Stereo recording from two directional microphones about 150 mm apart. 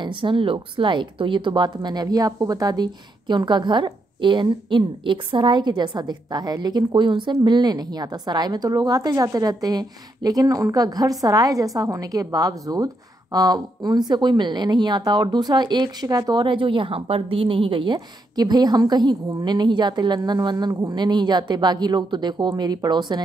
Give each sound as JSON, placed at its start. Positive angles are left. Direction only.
{"t": 0.0, "sound": "a woman's voice", "side_deg": -35}